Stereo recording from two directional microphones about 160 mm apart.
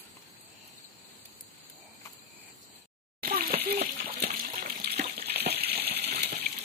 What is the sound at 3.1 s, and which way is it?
Water, 70° right (ahead or behind).